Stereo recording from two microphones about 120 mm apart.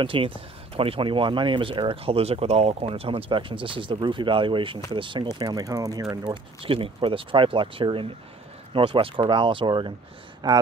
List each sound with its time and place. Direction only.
0.0 s speech: 45° right (ahead or behind); by 6.0 s 30° right (ahead or behind)
6.3 s speech: 50° right (ahead or behind)